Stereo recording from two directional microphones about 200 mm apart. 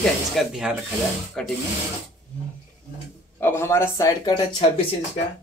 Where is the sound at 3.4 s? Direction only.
10° left (ahead or behind).